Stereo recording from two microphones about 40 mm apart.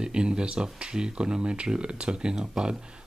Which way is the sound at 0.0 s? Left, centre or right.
Right.